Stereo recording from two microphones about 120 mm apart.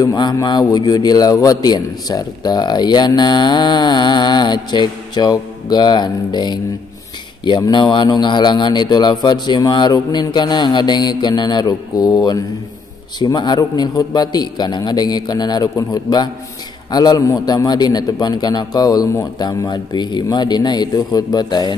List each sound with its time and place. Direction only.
0.0 s a man's voice: 35° left (ahead or behind)